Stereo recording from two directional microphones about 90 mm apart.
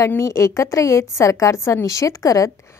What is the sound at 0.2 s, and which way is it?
A woman's voice, 35° left (ahead or behind).